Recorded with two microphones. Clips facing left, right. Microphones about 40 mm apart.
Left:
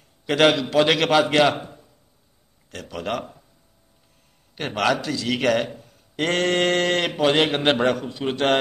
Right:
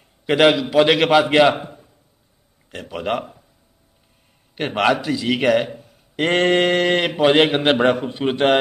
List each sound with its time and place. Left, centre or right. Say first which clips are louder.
0.3 s a man's voice: right 3 dB; centre
4.6 s a man's voice: right 4 dB; right
7.9 s a man's voice: right 5 dB; right